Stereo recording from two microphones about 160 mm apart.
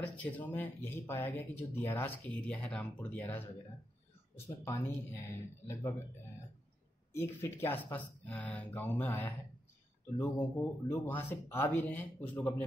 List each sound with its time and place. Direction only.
0.0 s speech: 10° left (ahead or behind)
4.5 s speech: 15° left (ahead or behind)
7.1 s speech: 15° left (ahead or behind)